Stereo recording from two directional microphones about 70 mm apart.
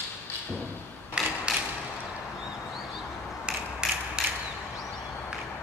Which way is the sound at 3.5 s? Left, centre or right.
Centre.